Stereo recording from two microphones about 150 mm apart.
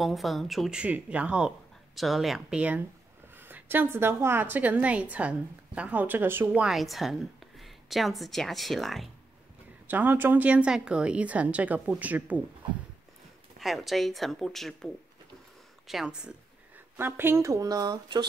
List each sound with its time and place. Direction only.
0.0 s a woman's voice: centre (ahead or behind)
9.8 s a woman's voice: 15° right (ahead or behind)
13.6 s a woman's voice: centre (ahead or behind)
15.9 s a woman's voice: 5° right (ahead or behind); by 18.2 s 25° right (ahead or behind)